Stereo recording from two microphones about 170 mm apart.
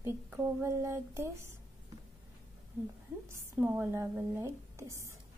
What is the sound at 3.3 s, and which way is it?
Speech, 10° right (ahead or behind).